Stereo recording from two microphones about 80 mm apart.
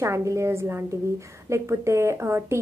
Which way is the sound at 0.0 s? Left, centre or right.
Right.